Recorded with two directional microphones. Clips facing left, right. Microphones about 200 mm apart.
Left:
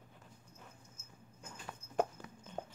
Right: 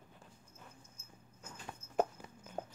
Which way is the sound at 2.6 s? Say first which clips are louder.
Right 1 dB; 5° right (ahead or behind).